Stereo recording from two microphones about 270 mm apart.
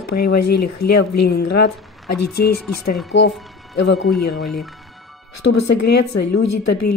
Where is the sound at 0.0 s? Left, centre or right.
Left.